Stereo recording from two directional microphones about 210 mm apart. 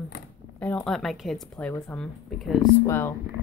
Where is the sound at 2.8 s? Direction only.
10° left (ahead or behind).